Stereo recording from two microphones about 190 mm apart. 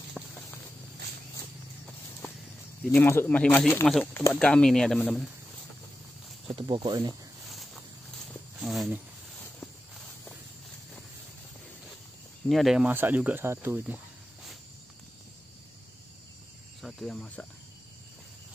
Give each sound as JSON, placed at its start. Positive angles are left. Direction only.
{"t": 0.2, "sound": "walk", "side_deg": 0}
{"t": 2.8, "sound": "speech", "side_deg": 10}
{"t": 6.4, "sound": "speech", "side_deg": -30}
{"t": 7.4, "sound": "a sound", "side_deg": 0}
{"t": 12.4, "sound": "speech", "side_deg": 0}
{"t": 16.8, "sound": "speech", "side_deg": 0}